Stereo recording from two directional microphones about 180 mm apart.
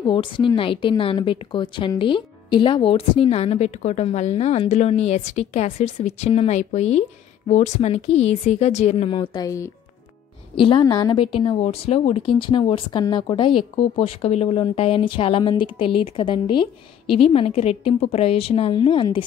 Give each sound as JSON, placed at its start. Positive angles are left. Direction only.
{"t": 0.0, "sound": "a woman's voice", "side_deg": 25}